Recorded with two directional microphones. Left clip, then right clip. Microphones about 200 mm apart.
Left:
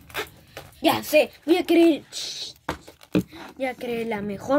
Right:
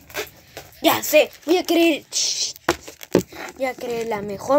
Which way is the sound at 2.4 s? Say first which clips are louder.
Right 9 dB; 40° right (ahead or behind).